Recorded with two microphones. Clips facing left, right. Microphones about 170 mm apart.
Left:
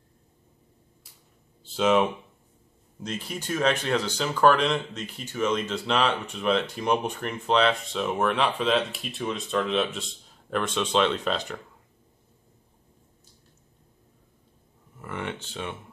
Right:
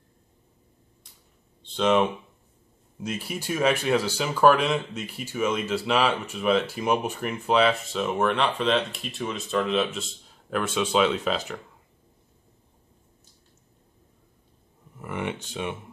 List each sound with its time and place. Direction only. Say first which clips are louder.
1.6 s speech: even; 5° left (ahead or behind)
15.0 s speech: right 3 dB; 15° right (ahead or behind)